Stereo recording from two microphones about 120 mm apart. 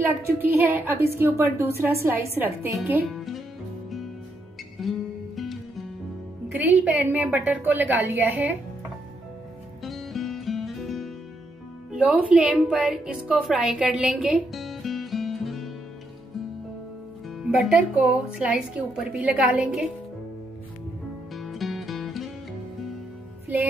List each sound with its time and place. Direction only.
0.0 s a woman's voice: 15° right (ahead or behind)
3.1 s music: centre (ahead or behind)
4.7 s music: centre (ahead or behind)
6.5 s speech: 15° right (ahead or behind)
9.8 s music: centre (ahead or behind)
11.9 s a woman's voice: 10° right (ahead or behind)
17.4 s speech: 5° right (ahead or behind)
21.4 s music: centre (ahead or behind)